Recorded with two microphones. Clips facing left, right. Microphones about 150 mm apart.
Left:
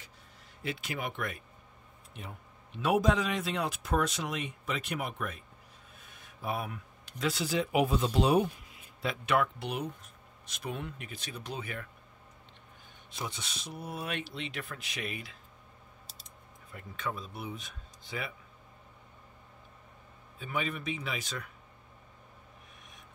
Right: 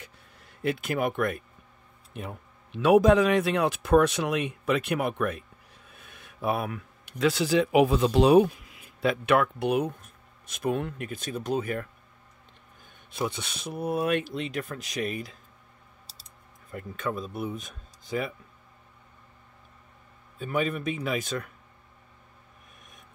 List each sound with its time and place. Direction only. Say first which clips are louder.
0.6 s speech: right 10 dB; 55° right (ahead or behind)
2.8 s speech: right 9 dB; 75° right (ahead or behind)
9.0 s speech: right 6 dB; 60° right (ahead or behind); by 11.9 s 45° right (ahead or behind)
13.1 s speech: right 9 dB; 60° right (ahead or behind); by 15.3 s 40° right (ahead or behind)
16.7 s speech: right 6 dB; 50° right (ahead or behind)
20.3 s speech: right 7 dB; 45° right (ahead or behind)